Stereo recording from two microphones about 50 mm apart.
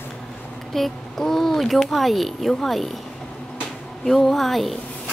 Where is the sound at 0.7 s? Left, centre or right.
Centre.